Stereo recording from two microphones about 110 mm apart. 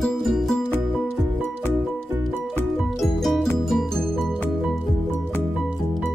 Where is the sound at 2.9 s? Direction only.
Centre (ahead or behind).